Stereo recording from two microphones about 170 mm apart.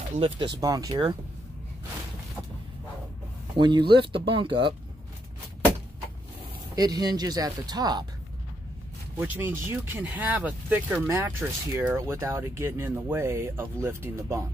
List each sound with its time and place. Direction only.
0.2 s speech: 25° right (ahead or behind)
3.5 s speech: 30° right (ahead or behind)
6.7 s speech: 25° right (ahead or behind)
9.2 s speech: 10° right (ahead or behind)